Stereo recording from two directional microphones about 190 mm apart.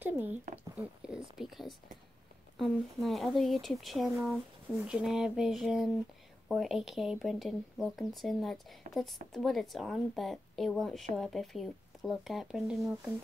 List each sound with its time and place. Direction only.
0.0 s speech: 10° right (ahead or behind)
0.7 s a sound: 5° right (ahead or behind)
2.6 s speech: centre (ahead or behind)